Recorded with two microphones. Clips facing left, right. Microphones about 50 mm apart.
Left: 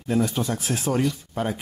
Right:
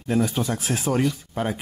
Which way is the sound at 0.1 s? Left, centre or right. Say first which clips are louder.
Right 1 dB; centre.